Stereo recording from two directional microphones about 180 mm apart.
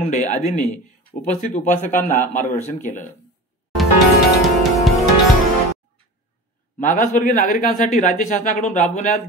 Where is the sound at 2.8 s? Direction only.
45° left (ahead or behind).